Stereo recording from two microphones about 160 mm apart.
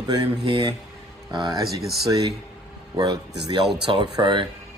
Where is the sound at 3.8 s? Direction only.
30° right (ahead or behind).